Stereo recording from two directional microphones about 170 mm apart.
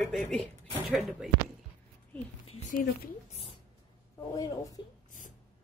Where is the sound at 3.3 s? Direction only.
35° left (ahead or behind).